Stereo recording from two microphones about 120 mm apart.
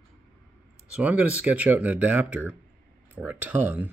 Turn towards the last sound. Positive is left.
turn(degrees=-15)  # may be behind; listen again after turning